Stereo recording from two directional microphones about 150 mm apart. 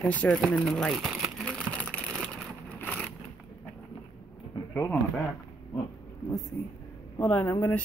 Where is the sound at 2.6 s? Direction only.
10° left (ahead or behind).